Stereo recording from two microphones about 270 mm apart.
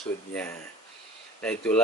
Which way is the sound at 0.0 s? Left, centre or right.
Centre.